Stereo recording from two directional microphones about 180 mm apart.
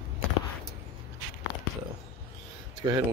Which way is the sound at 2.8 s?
25° right (ahead or behind).